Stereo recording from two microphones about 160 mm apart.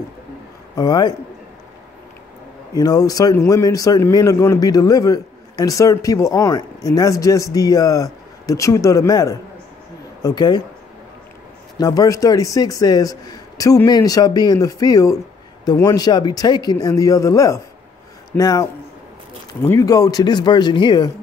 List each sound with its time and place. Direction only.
0.7 s a man's voice: 25° left (ahead or behind)
2.7 s a man's voice: 25° left (ahead or behind)
11.8 s a man's voice: 25° left (ahead or behind)